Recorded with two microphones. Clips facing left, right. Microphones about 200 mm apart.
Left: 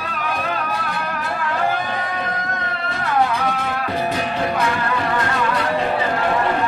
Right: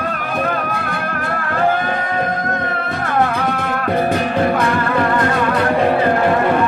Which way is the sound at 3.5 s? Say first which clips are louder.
Right 4 dB; 50° right (ahead or behind).